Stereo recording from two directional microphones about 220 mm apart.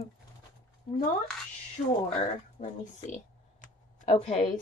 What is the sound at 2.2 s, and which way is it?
Speech, 35° left (ahead or behind).